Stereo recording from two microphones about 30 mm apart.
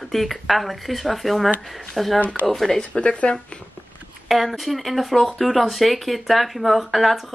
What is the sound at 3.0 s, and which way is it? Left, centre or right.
Speech, left.